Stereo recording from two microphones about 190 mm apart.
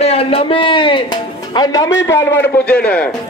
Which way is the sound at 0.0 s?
30° left (ahead or behind).